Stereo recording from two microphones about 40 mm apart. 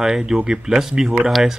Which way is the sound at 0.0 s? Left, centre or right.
Centre.